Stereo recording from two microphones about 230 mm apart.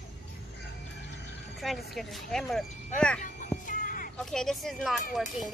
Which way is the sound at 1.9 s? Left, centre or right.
Centre.